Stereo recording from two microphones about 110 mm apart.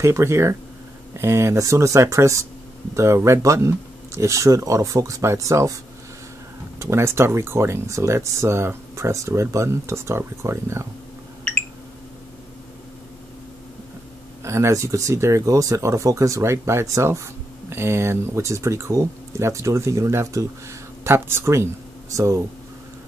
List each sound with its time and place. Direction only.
0.0 s speech: 25° right (ahead or behind)
6.8 s speech: 25° right (ahead or behind)
14.4 s speech: 25° right (ahead or behind)